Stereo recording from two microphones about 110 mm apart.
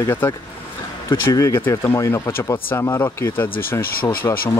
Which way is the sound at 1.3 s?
30° left (ahead or behind).